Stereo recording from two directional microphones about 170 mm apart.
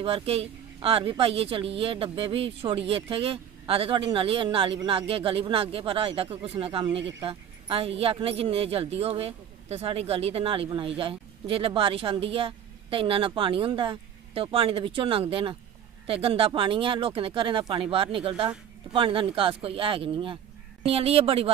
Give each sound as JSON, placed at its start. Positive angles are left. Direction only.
{"t": 0.0, "sound": "speech", "side_deg": -35}